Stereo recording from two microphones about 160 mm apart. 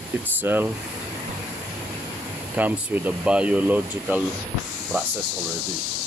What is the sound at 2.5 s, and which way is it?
Speech, 10° right (ahead or behind).